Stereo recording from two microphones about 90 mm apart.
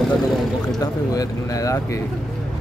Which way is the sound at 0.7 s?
40° left (ahead or behind).